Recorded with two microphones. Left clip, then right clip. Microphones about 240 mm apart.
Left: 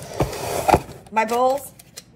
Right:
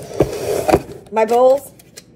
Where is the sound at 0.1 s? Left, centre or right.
Left.